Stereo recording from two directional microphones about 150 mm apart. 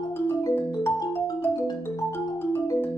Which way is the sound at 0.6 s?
15° left (ahead or behind).